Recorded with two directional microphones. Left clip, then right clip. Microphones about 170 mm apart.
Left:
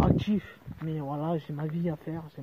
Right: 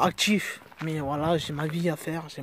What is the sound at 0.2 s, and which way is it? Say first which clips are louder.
Speech: right 9 dB; 20° right (ahead or behind).